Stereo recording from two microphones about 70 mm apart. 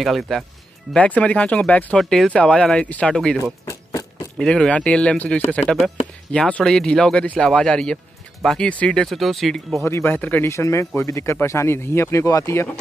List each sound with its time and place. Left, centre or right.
0.0 s speech: centre
0.9 s speech: centre
2.0 s speech: centre
3.6 s a sound: left
4.4 s speech: centre
9.1 s speech: centre
9.8 s speech: left
10.1 s speech: left
10.5 s speech: left